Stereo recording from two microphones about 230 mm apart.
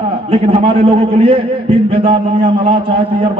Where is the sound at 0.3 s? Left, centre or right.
Right.